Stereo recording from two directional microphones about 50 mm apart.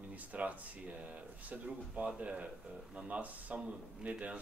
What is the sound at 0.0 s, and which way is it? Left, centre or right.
Speech, right.